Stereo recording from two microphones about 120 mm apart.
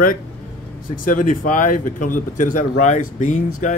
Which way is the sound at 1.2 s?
90° left.